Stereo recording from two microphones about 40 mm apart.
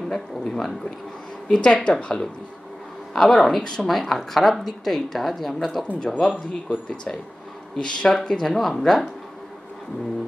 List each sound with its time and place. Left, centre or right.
0.1 s speech: centre
1.5 s speech: left
3.1 s speech: centre
6.0 s speech: centre
7.7 s speech: left